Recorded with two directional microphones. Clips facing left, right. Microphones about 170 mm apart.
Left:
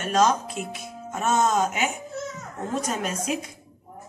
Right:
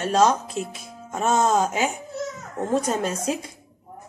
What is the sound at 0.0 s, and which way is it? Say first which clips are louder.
Speech: right 2 dB; 25° right (ahead or behind).